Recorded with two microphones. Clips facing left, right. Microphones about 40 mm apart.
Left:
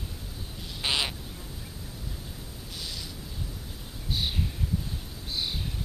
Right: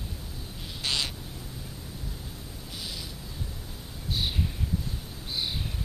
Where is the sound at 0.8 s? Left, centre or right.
Left.